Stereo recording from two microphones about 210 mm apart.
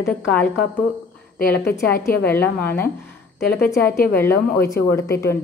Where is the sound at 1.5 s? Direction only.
50° left (ahead or behind).